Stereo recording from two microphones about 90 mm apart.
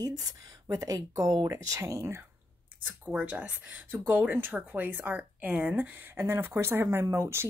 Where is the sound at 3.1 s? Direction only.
15° right (ahead or behind); by 7.4 s 30° right (ahead or behind).